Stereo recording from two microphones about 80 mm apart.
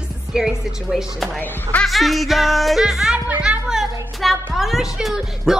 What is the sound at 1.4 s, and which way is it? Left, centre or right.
Speech, centre.